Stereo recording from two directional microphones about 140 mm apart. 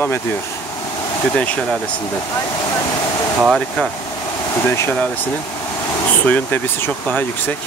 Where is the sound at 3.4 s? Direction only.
5° right (ahead or behind).